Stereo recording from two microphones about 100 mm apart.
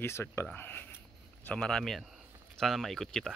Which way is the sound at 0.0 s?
25° left (ahead or behind).